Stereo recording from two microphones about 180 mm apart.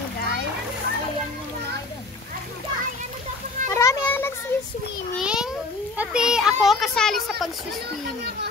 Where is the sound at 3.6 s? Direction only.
15° left (ahead or behind).